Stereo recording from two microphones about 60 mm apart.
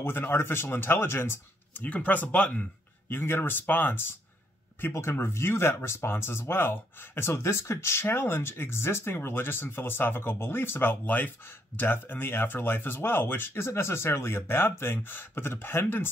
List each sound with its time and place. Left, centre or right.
0.0 s speech: left
1.8 s speech: left
3.1 s speech: left
5.1 s speech: left